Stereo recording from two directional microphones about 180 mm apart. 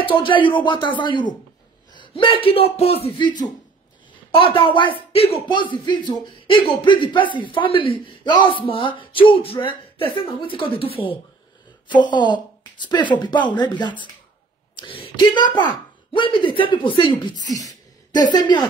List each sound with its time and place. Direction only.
0.0 s speech: 30° left (ahead or behind)
18.3 s speech: 25° left (ahead or behind)